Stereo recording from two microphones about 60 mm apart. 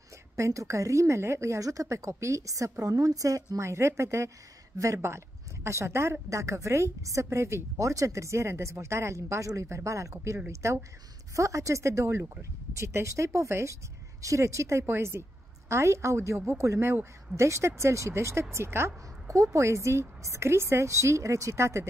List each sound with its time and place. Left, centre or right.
0.4 s speech: right
7.7 s speech: right